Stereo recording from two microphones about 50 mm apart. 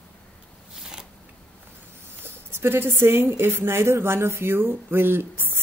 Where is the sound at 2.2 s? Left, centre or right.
Right.